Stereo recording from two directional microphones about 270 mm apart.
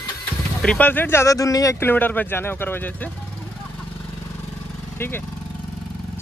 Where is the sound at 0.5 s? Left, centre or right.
Centre.